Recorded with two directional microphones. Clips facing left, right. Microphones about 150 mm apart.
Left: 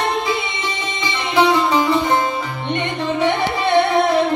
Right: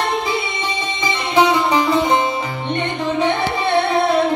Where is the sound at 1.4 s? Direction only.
Centre (ahead or behind).